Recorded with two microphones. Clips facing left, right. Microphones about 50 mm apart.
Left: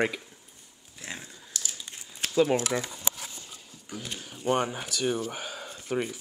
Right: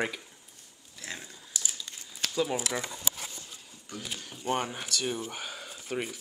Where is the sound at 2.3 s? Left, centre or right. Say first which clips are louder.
Left 7 dB; centre.